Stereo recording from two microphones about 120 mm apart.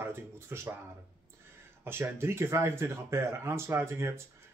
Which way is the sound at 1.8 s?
20° right (ahead or behind).